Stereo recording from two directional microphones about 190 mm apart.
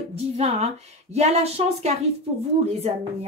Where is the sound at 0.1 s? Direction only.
35° right (ahead or behind).